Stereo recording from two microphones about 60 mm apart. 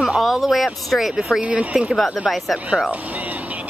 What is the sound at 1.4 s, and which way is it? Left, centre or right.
Speech, right.